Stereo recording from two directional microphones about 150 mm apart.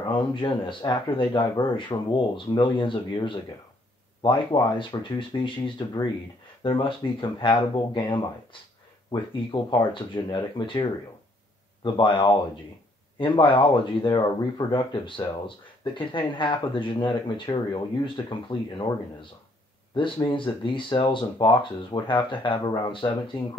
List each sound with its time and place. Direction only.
0.1 s speech: 35° left (ahead or behind)